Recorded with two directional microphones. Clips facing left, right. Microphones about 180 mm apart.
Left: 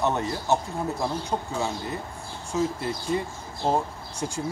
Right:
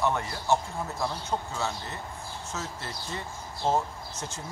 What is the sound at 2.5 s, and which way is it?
Speech, 10° left (ahead or behind).